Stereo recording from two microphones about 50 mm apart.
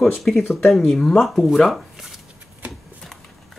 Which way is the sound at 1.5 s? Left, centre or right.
Centre.